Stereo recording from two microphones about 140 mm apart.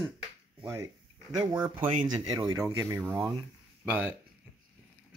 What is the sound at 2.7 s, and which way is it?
Speech, 15° right (ahead or behind).